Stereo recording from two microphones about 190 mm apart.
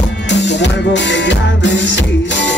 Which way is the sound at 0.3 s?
65° left (ahead or behind).